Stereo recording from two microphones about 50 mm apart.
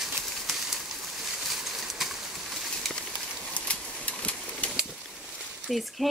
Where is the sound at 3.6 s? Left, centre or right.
Left.